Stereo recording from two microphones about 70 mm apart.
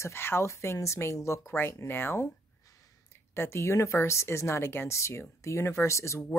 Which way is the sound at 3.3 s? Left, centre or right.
Left.